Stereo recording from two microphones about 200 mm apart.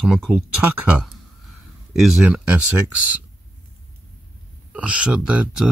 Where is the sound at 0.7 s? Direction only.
5° right (ahead or behind).